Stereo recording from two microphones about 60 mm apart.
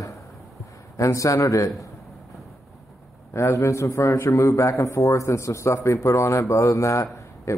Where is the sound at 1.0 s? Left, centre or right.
Left.